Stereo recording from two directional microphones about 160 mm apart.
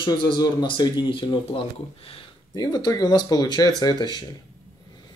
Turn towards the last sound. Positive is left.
turn(degrees=25)  # may be behind; listen again after turning